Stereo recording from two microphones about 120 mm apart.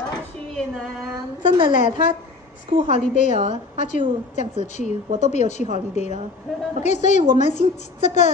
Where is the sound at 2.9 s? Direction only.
90° left.